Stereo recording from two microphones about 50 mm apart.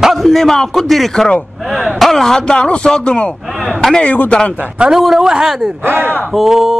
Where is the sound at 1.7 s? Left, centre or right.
Centre; by 4.4 s left.